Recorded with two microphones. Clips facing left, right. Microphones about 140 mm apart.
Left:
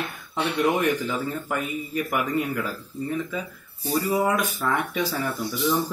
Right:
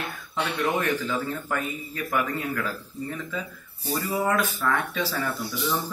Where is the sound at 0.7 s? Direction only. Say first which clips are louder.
Left 2 dB; 15° left (ahead or behind).